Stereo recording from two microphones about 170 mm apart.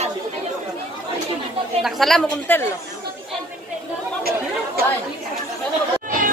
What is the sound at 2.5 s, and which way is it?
Speech, 10° left (ahead or behind).